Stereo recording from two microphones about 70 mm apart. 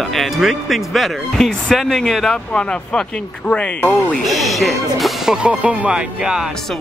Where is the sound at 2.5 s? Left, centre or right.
Centre.